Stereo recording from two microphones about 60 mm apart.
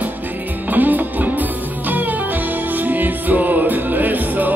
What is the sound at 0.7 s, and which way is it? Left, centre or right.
Music, right.